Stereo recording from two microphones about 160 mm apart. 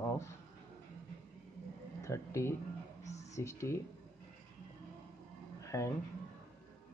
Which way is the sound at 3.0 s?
20° left (ahead or behind).